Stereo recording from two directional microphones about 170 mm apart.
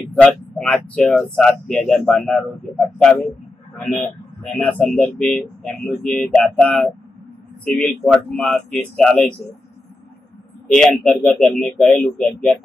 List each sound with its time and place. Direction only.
0.1 s speech: 5° left (ahead or behind)
10.8 s speech: centre (ahead or behind)